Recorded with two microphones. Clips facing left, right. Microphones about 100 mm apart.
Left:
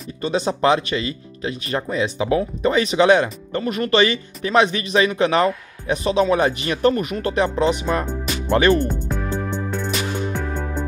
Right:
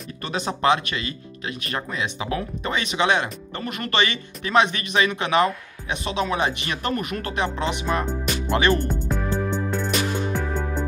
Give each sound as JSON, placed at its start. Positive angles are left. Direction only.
{"t": 0.2, "sound": "speech", "side_deg": 30}
{"t": 8.8, "sound": "music", "side_deg": 0}